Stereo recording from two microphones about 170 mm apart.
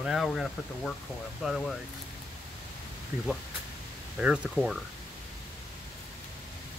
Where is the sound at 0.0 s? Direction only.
Centre (ahead or behind).